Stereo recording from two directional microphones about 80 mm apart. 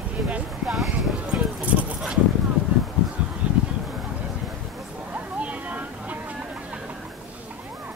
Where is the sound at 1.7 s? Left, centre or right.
Centre.